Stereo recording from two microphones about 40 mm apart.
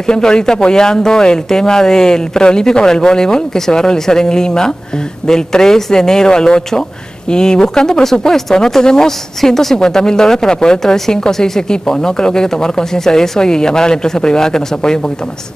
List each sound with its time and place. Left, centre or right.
0.0 s speech: centre